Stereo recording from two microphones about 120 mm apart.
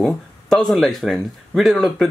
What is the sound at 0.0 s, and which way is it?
Speech, 5° left (ahead or behind).